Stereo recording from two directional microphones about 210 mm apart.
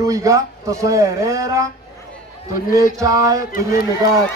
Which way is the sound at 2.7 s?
15° right (ahead or behind).